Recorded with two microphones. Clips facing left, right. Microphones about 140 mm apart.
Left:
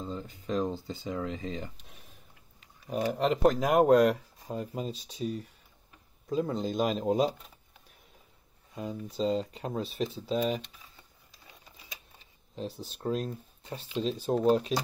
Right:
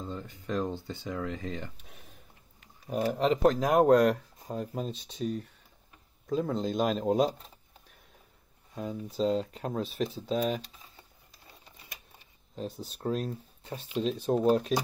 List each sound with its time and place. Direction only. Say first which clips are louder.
0.6 s speech: left 1 dB; 5° left (ahead or behind)
3.1 s speech: right 1 dB; centre (ahead or behind)
8.7 s speech: right 1 dB; centre (ahead or behind)
12.5 s speech: even; centre (ahead or behind)